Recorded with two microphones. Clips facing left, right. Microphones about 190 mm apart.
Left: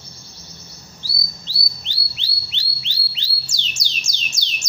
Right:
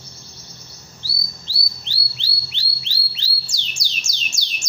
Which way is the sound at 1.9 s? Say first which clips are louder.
Right 1 dB; 20° left (ahead or behind).